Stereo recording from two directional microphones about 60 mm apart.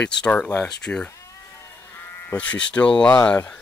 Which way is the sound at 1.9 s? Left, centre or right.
Left.